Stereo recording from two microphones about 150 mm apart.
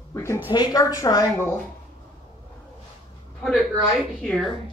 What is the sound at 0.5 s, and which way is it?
A woman's voice, 25° left (ahead or behind).